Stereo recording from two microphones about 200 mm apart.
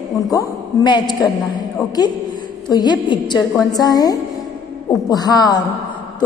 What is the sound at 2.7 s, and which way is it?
A woman's voice, 20° left (ahead or behind).